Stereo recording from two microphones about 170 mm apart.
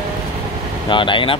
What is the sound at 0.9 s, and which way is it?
Speech, 30° left (ahead or behind).